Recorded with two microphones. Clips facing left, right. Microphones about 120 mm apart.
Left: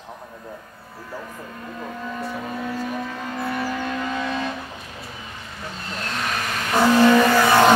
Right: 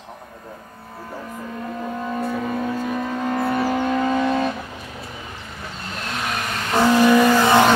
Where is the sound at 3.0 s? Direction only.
40° right (ahead or behind); by 4.4 s 20° right (ahead or behind).